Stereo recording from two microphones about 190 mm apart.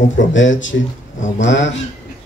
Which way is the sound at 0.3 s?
80° left.